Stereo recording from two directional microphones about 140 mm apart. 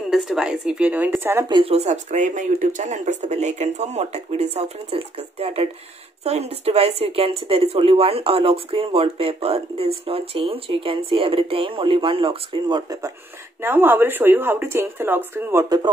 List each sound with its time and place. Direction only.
0.1 s speech: 5° right (ahead or behind)
1.5 s speech: 45° right (ahead or behind)
13.6 s speech: 15° right (ahead or behind)